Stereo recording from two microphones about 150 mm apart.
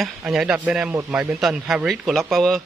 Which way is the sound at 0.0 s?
5° right (ahead or behind).